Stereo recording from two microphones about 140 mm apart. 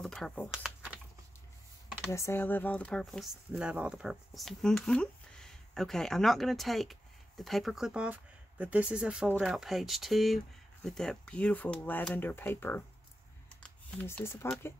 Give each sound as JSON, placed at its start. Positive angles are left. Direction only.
{"t": 0.0, "sound": "speech", "side_deg": 5}
{"t": 0.6, "sound": "typing", "side_deg": -5}
{"t": 2.0, "sound": "speech", "side_deg": 20}
{"t": 13.6, "sound": "computer keyboard", "side_deg": 10}